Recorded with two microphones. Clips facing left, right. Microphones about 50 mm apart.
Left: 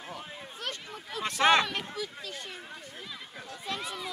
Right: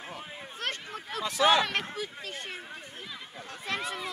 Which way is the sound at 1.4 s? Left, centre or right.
Left.